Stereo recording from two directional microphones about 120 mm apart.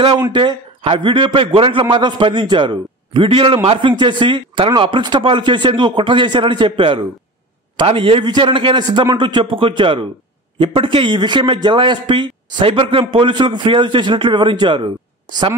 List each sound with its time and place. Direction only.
0.3 s a man's voice: 40° right (ahead or behind)